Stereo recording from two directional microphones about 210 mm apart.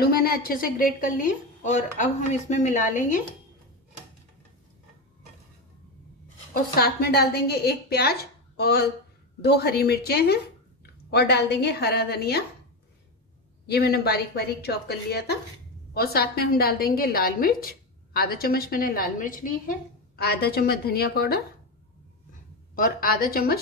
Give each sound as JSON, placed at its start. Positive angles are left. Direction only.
{"t": 0.0, "sound": "a woman's voice", "side_deg": 45}
{"t": 6.5, "sound": "a woman's voice", "side_deg": 45}
{"t": 13.7, "sound": "a woman's voice", "side_deg": 50}
{"t": 22.8, "sound": "a woman's voice", "side_deg": 45}